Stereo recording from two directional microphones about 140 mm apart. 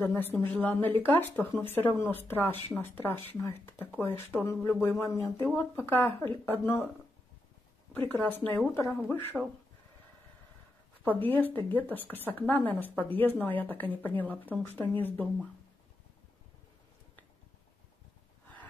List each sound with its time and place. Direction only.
0.0 s speech: 15° left (ahead or behind)
8.1 s speech: 15° left (ahead or behind)
9.3 s speech: centre (ahead or behind)
11.1 s speech: 15° left (ahead or behind)